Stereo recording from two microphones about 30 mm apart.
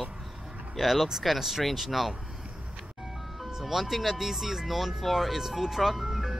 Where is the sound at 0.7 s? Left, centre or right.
Centre.